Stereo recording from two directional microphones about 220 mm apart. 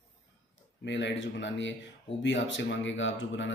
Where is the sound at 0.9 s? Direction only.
55° left (ahead or behind).